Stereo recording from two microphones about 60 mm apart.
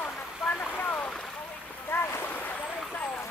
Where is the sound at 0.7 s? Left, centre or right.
Left.